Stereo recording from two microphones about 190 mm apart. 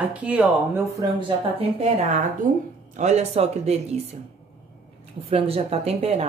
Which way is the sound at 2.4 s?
45° right (ahead or behind).